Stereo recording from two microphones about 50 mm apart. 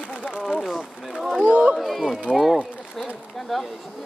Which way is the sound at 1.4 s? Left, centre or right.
Right.